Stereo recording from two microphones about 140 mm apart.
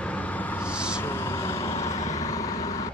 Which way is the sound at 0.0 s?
10° left (ahead or behind).